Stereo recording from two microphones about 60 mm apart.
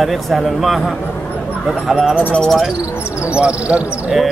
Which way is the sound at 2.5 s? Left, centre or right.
Centre.